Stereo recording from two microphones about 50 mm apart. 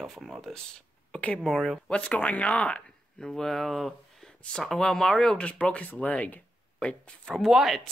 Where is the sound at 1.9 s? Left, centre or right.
Left.